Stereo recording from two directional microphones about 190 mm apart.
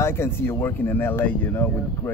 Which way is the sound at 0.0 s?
15° left (ahead or behind).